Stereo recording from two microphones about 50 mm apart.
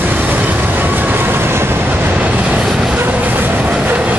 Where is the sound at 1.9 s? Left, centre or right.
Right.